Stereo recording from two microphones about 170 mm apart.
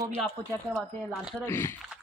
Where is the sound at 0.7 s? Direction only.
5° right (ahead or behind).